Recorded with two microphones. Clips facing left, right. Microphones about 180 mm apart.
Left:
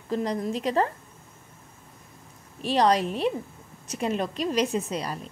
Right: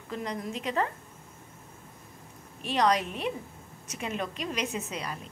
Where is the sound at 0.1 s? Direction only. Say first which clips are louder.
Left 7 dB; 35° left (ahead or behind).